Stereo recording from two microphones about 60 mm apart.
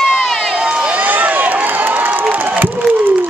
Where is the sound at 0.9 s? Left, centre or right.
Right.